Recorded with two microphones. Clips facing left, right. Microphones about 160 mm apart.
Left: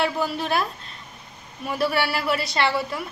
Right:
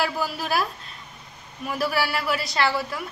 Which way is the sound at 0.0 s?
5° right (ahead or behind).